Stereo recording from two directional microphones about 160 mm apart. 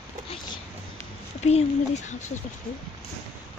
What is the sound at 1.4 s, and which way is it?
Speech, 45° left (ahead or behind).